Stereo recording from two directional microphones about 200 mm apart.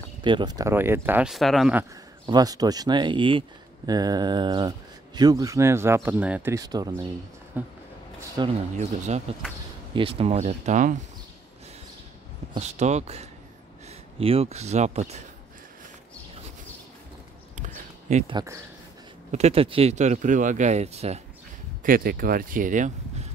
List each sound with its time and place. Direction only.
0.2 s speech: 25° right (ahead or behind); by 1.9 s 5° right (ahead or behind)
2.2 s speech: 20° right (ahead or behind)
8.4 s speech: 20° right (ahead or behind)
8.7 s speech: 35° right (ahead or behind)
12.5 s speech: 35° right (ahead or behind)
17.6 s a sound: 40° right (ahead or behind)
18.2 s speech: 20° right (ahead or behind)
19.3 s speech: 30° right (ahead or behind)
21.8 s speech: 45° right (ahead or behind)